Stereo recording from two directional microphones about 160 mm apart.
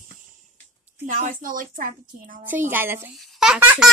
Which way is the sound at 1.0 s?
55° right (ahead or behind).